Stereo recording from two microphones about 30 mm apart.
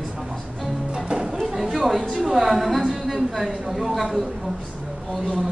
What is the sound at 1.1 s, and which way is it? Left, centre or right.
Music, right.